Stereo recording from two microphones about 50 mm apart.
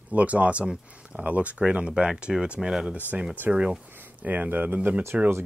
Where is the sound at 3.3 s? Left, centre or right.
Right.